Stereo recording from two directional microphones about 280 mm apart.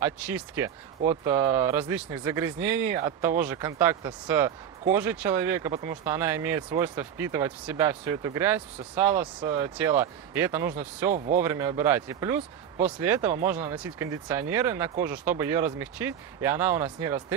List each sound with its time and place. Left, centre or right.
0.0 s speech: centre
2.6 s speech: right
3.1 s speech: centre
11.1 s speech: right
11.3 s speech: centre